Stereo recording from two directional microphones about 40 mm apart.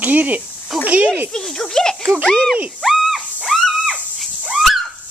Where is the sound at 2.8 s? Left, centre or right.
Centre.